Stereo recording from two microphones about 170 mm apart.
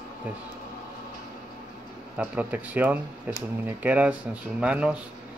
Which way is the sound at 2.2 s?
10° right (ahead or behind).